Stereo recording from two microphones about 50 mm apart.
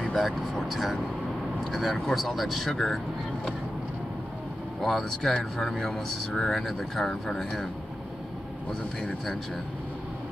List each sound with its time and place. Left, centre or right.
0.0 s speech: centre
4.8 s speech: centre
6.6 s speech: centre
7.1 s speech: centre